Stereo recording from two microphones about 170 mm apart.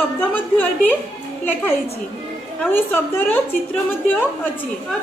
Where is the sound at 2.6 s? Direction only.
10° left (ahead or behind).